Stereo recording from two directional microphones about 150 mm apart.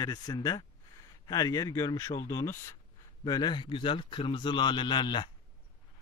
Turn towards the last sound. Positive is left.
turn(degrees=30)  # may be behind; listen again after turning